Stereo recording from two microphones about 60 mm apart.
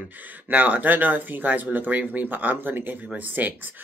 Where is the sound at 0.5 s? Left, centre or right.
Right.